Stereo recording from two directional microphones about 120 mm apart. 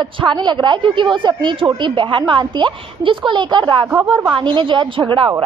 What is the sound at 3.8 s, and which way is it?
Speech, 15° right (ahead or behind).